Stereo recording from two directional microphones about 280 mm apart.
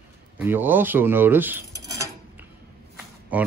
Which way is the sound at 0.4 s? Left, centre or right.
Centre.